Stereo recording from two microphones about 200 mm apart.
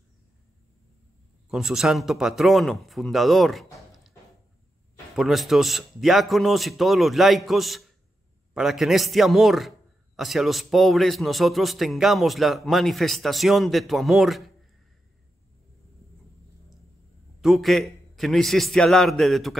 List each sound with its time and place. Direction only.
1.5 s a man's voice: centre (ahead or behind)
5.1 s a man's voice: centre (ahead or behind)
17.4 s a man's voice: centre (ahead or behind)